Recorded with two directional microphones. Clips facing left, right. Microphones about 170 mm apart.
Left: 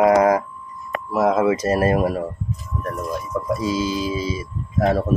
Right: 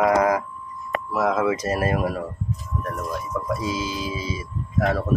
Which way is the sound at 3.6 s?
35° left (ahead or behind).